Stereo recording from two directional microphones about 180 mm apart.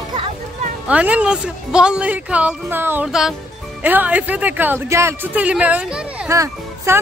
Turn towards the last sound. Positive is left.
turn(degrees=-15)  # may be behind; listen again after turning